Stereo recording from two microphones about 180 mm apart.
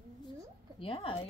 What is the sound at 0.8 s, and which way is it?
Speech, 30° left (ahead or behind).